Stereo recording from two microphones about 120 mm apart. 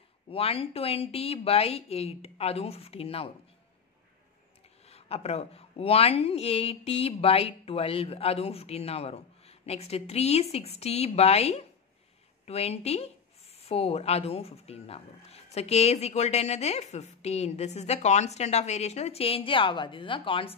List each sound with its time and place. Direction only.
0.3 s speech: 55° left (ahead or behind)
4.8 s speech: 60° left (ahead or behind)